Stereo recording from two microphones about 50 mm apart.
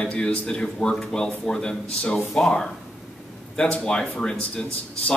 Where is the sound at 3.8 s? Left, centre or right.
Centre.